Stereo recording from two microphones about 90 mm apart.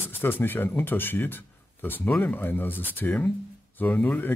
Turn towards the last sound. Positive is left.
turn(degrees=15)  # may be behind; listen again after turning